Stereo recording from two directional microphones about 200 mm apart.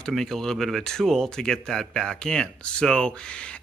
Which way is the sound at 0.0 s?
Centre (ahead or behind).